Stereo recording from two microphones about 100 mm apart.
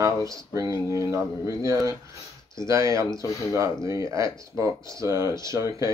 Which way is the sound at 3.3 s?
30° left (ahead or behind).